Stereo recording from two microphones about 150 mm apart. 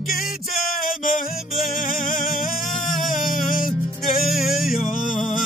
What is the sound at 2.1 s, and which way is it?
Music, 65° left (ahead or behind).